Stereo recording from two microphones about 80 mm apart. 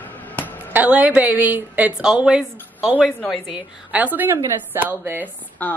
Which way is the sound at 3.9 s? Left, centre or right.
Right.